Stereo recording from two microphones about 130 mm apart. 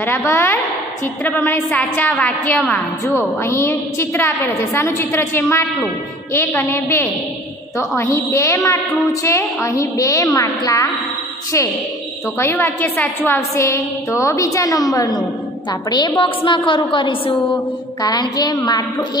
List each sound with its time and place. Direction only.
0.0 s a woman's voice: 15° left (ahead or behind)
12.4 s a woman's voice: 20° left (ahead or behind)